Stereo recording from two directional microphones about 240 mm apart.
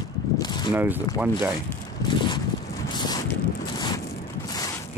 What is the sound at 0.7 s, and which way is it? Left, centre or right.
Speech, centre.